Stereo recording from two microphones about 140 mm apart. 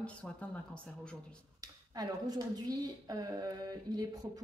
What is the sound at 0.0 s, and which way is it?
Speech, 10° left (ahead or behind).